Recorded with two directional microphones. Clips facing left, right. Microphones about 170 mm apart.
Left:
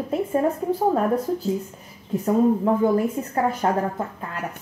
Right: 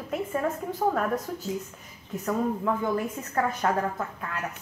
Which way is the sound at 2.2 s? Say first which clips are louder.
Left 8 dB; 30° left (ahead or behind).